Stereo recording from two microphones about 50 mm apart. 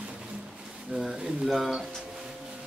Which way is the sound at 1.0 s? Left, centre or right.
Centre.